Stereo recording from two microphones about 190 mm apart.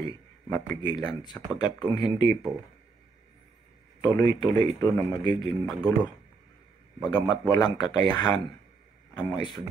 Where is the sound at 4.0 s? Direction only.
20° left (ahead or behind).